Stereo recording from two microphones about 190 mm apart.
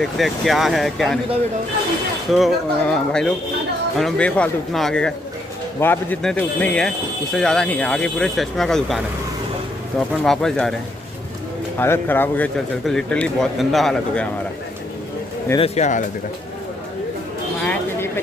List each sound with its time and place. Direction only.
0.0 s a man's voice: centre (ahead or behind)
2.3 s a man's voice: centre (ahead or behind)
11.8 s a man's voice: 10° left (ahead or behind)
15.5 s speech: 30° left (ahead or behind)
17.6 s a sound: 10° left (ahead or behind)